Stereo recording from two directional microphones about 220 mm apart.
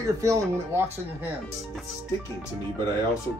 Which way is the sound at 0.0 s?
15° right (ahead or behind).